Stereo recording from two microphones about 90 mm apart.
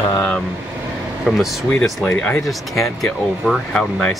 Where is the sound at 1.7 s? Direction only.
5° left (ahead or behind).